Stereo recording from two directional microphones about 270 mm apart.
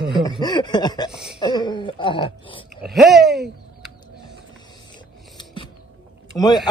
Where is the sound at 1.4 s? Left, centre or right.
Centre.